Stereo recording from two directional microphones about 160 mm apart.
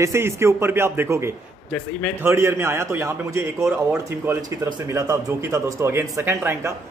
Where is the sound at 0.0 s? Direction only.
15° right (ahead or behind).